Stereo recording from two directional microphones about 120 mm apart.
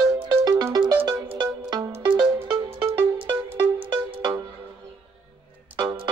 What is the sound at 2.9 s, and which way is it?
Music, 45° right (ahead or behind).